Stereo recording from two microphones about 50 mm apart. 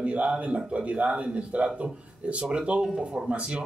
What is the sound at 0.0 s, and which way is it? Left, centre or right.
Speech, right.